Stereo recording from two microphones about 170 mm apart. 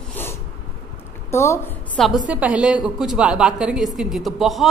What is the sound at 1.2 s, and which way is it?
Speech, 15° left (ahead or behind).